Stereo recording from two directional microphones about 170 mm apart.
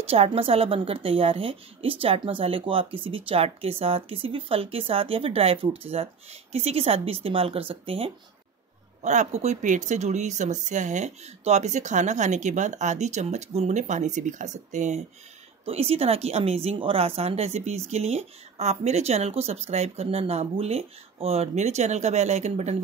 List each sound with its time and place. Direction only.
0.1 s a woman's voice: 35° right (ahead or behind)
9.0 s a woman's voice: 45° right (ahead or behind)